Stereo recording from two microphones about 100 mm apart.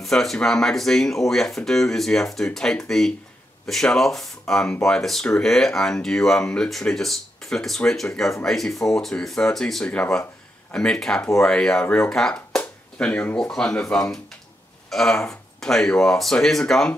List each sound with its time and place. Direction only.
0.0 s speech: 5° left (ahead or behind)